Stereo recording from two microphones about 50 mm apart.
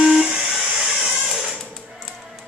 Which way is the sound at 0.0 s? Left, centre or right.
Centre.